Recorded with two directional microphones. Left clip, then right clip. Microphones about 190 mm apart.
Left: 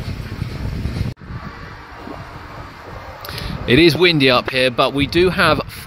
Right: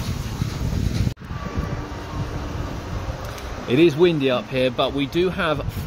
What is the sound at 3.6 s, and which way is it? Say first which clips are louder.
Speech: left 4 dB; 25° left (ahead or behind).